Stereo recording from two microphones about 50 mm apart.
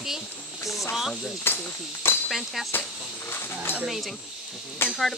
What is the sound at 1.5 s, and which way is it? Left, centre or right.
Speech, left.